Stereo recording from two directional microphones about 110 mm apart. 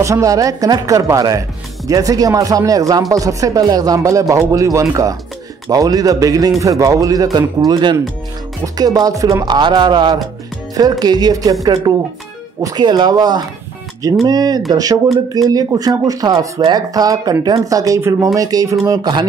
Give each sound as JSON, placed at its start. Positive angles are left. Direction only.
{"t": 0.0, "sound": "speech", "side_deg": -30}